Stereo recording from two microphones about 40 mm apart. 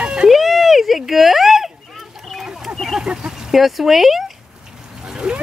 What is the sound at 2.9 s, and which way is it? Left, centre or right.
Speech, centre.